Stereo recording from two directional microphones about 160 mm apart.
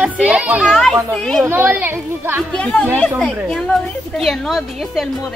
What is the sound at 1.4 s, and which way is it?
A woman's voice, 15° right (ahead or behind).